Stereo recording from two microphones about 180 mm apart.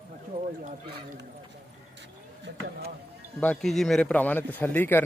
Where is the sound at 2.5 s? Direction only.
90° right.